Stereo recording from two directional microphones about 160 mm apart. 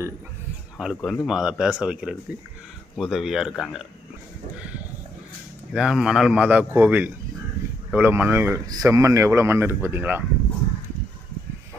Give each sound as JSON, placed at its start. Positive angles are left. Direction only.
{"t": 0.7, "sound": "speech", "side_deg": 0}
{"t": 5.7, "sound": "speech", "side_deg": -5}